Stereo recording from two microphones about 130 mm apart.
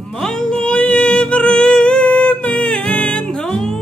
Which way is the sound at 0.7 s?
5° left (ahead or behind).